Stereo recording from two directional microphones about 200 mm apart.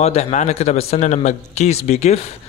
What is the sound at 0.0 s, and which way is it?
A man's voice, 35° left (ahead or behind).